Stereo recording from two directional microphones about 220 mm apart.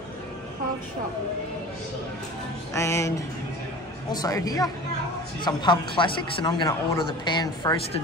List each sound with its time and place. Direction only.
2.7 s speech: 15° left (ahead or behind)
4.1 s speech: 15° left (ahead or behind)